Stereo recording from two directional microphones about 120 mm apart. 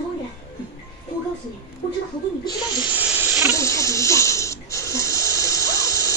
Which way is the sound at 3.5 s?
25° left (ahead or behind).